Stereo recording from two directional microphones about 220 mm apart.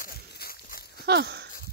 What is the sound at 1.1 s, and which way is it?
Wheeze, 45° right (ahead or behind).